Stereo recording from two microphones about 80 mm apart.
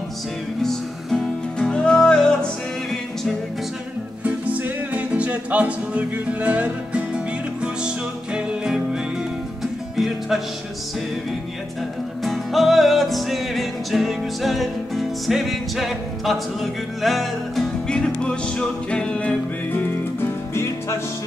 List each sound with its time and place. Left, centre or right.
0.6 s music: centre
4.2 s music: centre
9.9 s music: centre
12.3 s music: centre; by 20.2 s left